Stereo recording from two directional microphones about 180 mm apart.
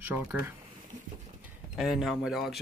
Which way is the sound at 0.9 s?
45° right (ahead or behind).